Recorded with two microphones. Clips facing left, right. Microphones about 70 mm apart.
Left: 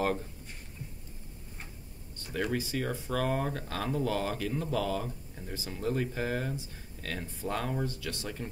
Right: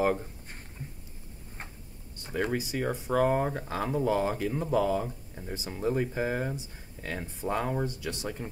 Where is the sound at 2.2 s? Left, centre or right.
Centre.